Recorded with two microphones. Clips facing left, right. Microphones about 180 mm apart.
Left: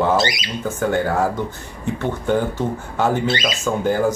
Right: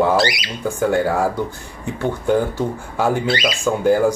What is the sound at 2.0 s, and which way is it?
Speech, 10° right (ahead or behind).